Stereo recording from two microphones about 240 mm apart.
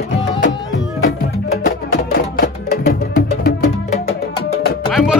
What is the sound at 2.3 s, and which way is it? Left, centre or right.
Music, left.